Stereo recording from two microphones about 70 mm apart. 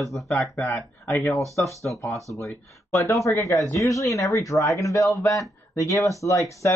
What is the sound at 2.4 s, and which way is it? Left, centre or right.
Speech, left.